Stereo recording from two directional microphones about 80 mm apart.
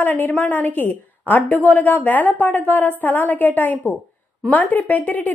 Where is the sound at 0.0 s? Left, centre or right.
Left.